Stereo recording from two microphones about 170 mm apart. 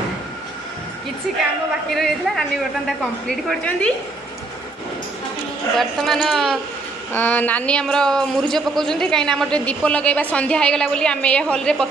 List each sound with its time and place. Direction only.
2.0 s a woman's voice: centre (ahead or behind)
5.8 s a woman's voice: centre (ahead or behind)